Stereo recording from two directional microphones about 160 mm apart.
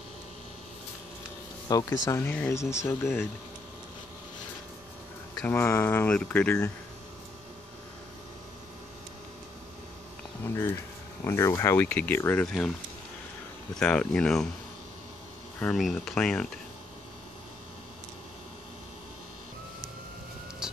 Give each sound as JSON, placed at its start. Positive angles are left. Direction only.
{"t": 1.7, "sound": "speech", "side_deg": 20}
{"t": 5.4, "sound": "speech", "side_deg": 10}
{"t": 10.4, "sound": "speech", "side_deg": 15}
{"t": 12.4, "sound": "speech", "side_deg": 5}
{"t": 13.7, "sound": "speech", "side_deg": 5}
{"t": 15.6, "sound": "speech", "side_deg": 5}
{"t": 20.6, "sound": "vehicle", "side_deg": -5}